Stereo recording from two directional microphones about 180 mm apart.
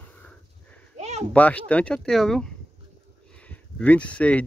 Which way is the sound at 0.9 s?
40° right (ahead or behind).